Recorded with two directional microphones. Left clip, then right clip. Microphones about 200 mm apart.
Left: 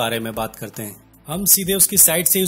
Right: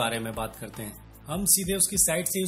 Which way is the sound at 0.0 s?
30° left (ahead or behind).